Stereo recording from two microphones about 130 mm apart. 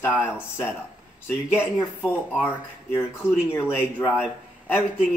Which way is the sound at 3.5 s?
15° left (ahead or behind).